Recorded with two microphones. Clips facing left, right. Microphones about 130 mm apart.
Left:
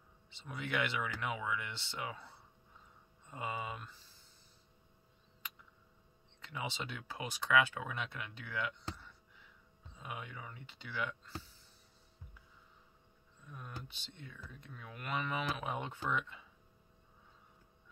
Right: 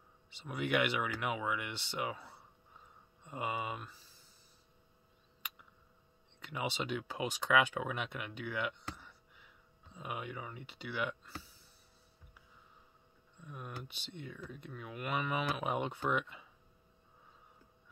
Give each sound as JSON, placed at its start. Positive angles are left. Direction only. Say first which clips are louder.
{"t": 0.3, "sound": "speech", "louder": "right 5 dB", "side_deg": -15}
{"t": 6.4, "sound": "speech", "louder": "right 4 dB", "side_deg": -15}
{"t": 9.9, "sound": "speech", "louder": "right 4 dB", "side_deg": -15}
{"t": 13.5, "sound": "speech", "louder": "right 3 dB", "side_deg": -10}